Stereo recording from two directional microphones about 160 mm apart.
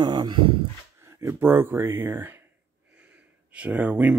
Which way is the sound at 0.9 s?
15° right (ahead or behind).